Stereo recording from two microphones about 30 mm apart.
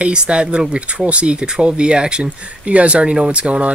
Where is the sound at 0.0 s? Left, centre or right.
Right.